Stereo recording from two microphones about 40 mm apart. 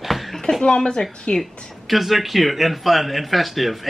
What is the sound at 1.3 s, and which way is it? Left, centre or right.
Speech, centre.